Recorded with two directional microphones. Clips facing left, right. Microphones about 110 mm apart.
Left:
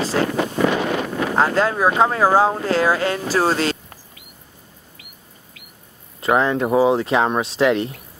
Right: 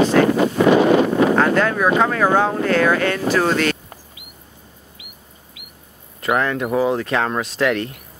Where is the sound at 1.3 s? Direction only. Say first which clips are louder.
Right 1 dB; 25° left (ahead or behind).